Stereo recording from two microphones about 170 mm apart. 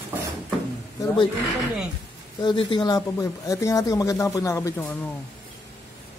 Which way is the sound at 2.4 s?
30° left (ahead or behind).